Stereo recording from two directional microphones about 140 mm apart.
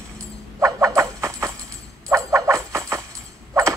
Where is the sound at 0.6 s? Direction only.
25° right (ahead or behind).